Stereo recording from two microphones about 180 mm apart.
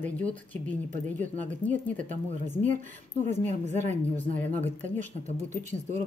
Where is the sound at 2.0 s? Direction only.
45° right (ahead or behind).